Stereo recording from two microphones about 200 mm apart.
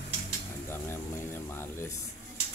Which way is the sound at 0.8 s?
10° left (ahead or behind).